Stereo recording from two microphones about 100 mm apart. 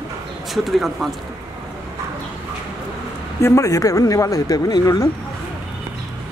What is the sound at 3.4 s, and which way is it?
Speech, 35° left (ahead or behind).